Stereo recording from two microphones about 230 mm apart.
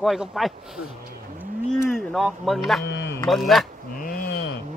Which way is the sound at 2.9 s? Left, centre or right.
Left.